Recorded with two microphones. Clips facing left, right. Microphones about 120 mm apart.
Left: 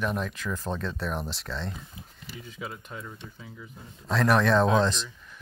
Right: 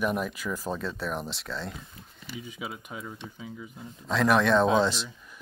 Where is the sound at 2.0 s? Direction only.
15° left (ahead or behind).